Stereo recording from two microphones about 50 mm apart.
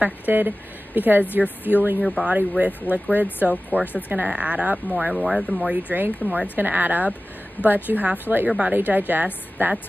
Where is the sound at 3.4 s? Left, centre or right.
Right.